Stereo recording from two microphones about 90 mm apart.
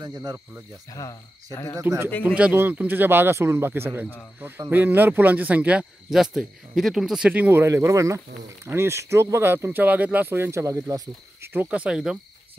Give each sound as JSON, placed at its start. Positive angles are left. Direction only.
{"t": 0.0, "sound": "speech", "side_deg": -45}
{"t": 0.9, "sound": "speech", "side_deg": 35}
{"t": 1.8, "sound": "speech", "side_deg": -25}
{"t": 2.2, "sound": "speech", "side_deg": -15}
{"t": 7.2, "sound": "speech", "side_deg": -20}
{"t": 7.6, "sound": "speech", "side_deg": -30}
{"t": 11.4, "sound": "cricket", "side_deg": -30}
{"t": 11.7, "sound": "speech", "side_deg": -10}